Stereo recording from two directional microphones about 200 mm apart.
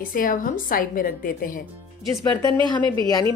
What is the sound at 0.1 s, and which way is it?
A woman's voice, 45° left (ahead or behind).